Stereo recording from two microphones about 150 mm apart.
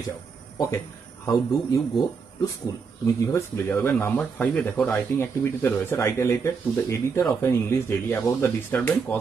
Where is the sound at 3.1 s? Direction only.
20° left (ahead or behind).